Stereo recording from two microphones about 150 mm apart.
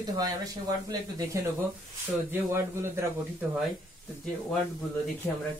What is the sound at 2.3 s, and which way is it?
Speech, 15° right (ahead or behind).